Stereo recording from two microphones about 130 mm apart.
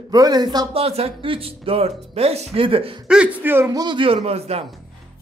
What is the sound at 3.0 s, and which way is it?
Speech, 10° right (ahead or behind).